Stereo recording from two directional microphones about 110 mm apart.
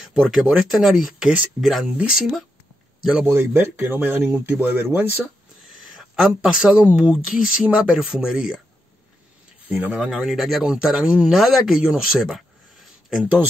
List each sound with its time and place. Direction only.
0.0 s a man's voice: 5° right (ahead or behind)
3.3 s speech: 20° right (ahead or behind)
5.9 s speech: 5° right (ahead or behind)
9.7 s speech: 15° right (ahead or behind)
13.1 s speech: 15° right (ahead or behind)